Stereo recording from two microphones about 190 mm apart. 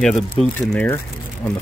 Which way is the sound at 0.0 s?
5° left (ahead or behind).